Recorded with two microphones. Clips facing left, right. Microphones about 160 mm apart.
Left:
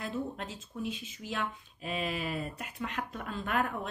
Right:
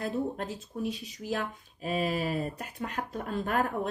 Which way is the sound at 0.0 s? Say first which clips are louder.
Right 5 dB; 35° right (ahead or behind).